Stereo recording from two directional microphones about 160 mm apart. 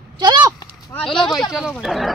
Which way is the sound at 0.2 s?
25° right (ahead or behind).